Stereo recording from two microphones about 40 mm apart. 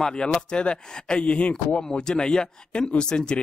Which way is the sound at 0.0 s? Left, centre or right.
Left.